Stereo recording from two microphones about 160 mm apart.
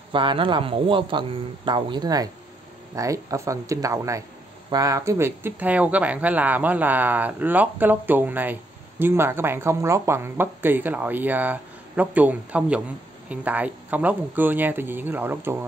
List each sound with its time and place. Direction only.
0.1 s speech: 30° right (ahead or behind); by 15.5 s 15° right (ahead or behind)